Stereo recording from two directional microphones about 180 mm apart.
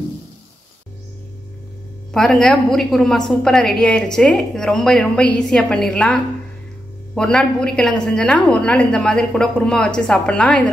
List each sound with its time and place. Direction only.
2.1 s a woman's voice: 5° left (ahead or behind)
7.2 s a woman's voice: 5° left (ahead or behind)